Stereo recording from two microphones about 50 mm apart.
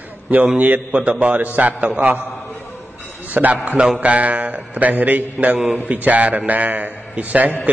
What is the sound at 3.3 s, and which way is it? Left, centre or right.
A man's voice, right.